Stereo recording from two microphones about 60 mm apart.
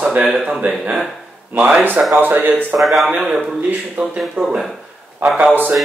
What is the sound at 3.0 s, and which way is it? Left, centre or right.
Speech, centre.